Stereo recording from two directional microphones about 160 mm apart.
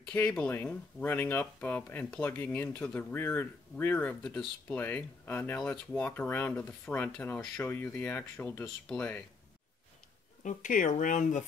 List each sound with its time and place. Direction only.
0.1 s speech: 10° left (ahead or behind)
10.4 s speech: 55° left (ahead or behind)